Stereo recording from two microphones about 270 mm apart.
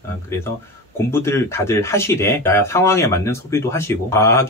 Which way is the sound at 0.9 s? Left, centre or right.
Centre.